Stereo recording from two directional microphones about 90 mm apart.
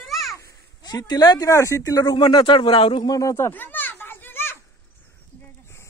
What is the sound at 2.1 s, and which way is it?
Speech, 60° left (ahead or behind).